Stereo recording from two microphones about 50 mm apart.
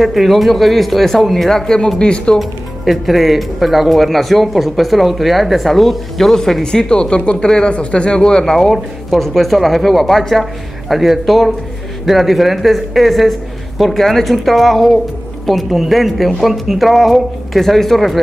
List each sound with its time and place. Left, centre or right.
0.0 s speech: centre
2.0 s speech: centre
2.3 s speech: centre